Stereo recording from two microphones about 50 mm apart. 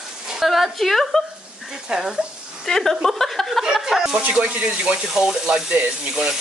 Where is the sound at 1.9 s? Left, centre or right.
Centre.